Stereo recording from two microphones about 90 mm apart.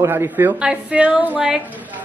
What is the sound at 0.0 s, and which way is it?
Speech, 25° right (ahead or behind).